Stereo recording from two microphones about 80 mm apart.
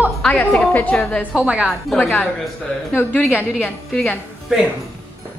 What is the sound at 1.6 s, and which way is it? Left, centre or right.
Speech, centre.